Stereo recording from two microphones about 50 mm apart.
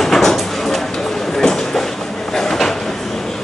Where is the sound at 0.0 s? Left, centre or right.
Centre.